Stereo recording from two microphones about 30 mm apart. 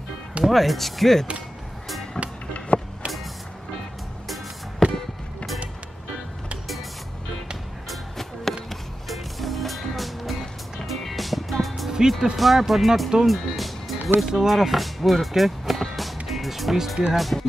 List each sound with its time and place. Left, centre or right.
0.5 s speech: centre
2.1 s music: left
4.8 s music: centre
7.9 s music: centre
12.4 s speech: centre
13.3 s music: centre
16.7 s speech: centre